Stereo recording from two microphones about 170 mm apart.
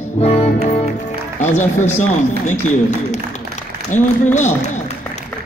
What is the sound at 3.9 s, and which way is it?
Speech, 45° left (ahead or behind).